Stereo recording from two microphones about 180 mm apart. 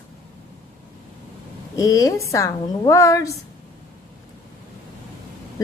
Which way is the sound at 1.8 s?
20° left (ahead or behind).